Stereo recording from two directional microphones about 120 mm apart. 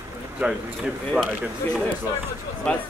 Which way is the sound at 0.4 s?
5° right (ahead or behind).